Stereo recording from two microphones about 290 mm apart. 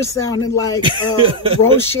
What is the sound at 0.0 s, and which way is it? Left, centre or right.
Speech, centre.